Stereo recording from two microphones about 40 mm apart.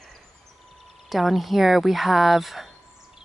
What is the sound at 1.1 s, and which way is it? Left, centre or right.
Speech, centre.